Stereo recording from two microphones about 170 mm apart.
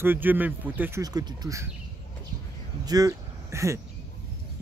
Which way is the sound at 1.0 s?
20° right (ahead or behind).